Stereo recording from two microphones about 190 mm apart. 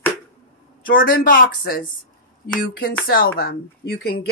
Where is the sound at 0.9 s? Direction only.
50° left (ahead or behind).